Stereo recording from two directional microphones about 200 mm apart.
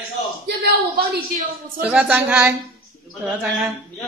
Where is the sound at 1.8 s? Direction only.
5° right (ahead or behind).